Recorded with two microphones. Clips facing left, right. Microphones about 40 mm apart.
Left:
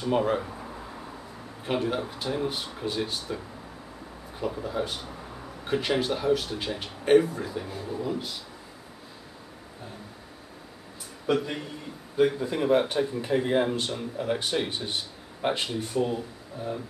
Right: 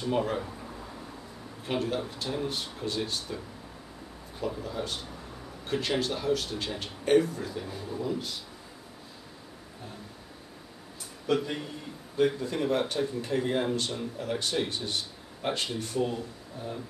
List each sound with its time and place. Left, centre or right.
0.0 s a sound: centre
1.7 s speech: centre
11.2 s speech: centre